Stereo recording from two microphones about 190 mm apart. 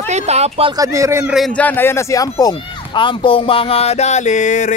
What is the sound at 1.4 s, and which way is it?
Speech, 5° left (ahead or behind).